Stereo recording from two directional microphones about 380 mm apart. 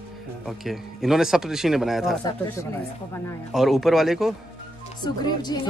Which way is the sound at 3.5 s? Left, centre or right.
Centre.